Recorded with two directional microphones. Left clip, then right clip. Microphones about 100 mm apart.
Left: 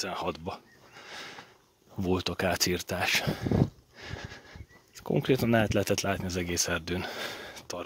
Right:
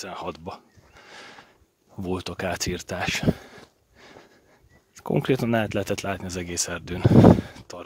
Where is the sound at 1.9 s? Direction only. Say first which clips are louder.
Left 1 dB; 15° right (ahead or behind).